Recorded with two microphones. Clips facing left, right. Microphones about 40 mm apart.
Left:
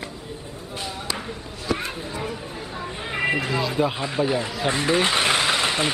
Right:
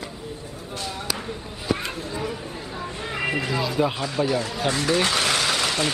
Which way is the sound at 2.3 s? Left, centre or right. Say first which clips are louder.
Even; centre.